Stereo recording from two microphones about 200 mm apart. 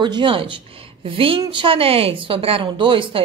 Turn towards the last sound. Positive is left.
turn(degrees=-25)  # may be behind; listen again after turning